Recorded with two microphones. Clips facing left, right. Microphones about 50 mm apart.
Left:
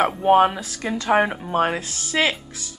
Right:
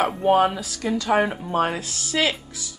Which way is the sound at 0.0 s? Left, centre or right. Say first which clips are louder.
Left 2 dB; centre.